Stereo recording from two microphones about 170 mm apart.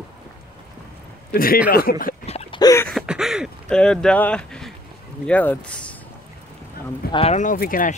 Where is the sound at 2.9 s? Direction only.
5° right (ahead or behind).